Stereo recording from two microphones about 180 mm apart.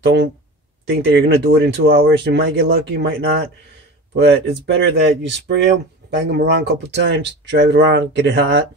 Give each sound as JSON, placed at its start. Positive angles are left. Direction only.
{"t": 0.0, "sound": "speech", "side_deg": -75}
{"t": 0.9, "sound": "speech", "side_deg": -65}
{"t": 1.9, "sound": "speech", "side_deg": -85}